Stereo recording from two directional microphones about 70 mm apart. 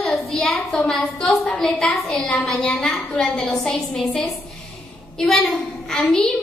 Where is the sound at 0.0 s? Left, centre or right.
Centre.